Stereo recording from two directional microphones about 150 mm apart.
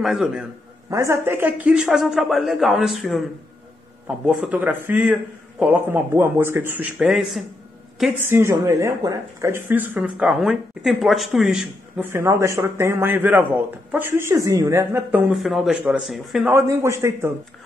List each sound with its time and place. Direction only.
0.0 s speech: 5° right (ahead or behind)
0.8 s speech: 20° right (ahead or behind); by 3.3 s centre (ahead or behind)
4.3 s speech: 5° right (ahead or behind)
8.3 s speech: 20° right (ahead or behind); by 11.6 s centre (ahead or behind)
12.0 s speech: 15° right (ahead or behind)
15.3 s speech: centre (ahead or behind)
16.4 s a man's voice: 15° right (ahead or behind)